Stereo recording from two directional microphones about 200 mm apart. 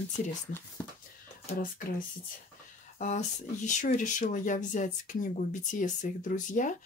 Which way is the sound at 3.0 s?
40° left (ahead or behind).